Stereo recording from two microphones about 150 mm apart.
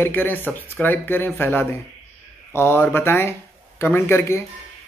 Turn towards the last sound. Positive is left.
turn(degrees=15)  # may be behind; listen again after turning